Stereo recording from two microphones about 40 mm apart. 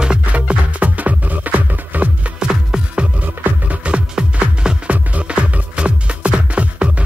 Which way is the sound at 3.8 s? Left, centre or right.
Right.